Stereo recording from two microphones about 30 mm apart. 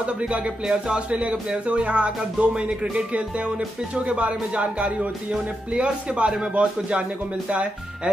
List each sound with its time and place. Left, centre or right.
0.7 s speech: right
1.7 s speech: right
3.9 s speech: right